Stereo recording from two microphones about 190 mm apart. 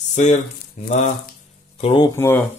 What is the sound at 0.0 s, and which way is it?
Speech, 40° left (ahead or behind).